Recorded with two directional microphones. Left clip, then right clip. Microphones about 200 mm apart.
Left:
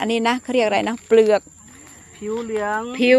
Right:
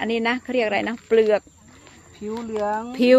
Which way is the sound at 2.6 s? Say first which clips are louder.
Even; 30° right (ahead or behind).